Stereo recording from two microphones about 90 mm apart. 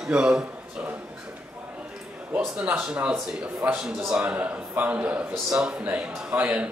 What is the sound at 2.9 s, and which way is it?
A man's voice, 15° right (ahead or behind).